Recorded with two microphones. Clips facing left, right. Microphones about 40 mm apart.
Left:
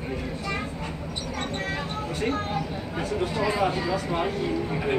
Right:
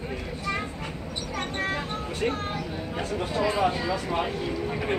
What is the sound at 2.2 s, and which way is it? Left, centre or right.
Speech, centre.